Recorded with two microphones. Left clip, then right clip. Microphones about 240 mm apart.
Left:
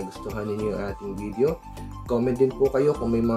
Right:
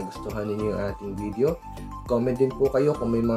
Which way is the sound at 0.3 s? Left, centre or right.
Centre.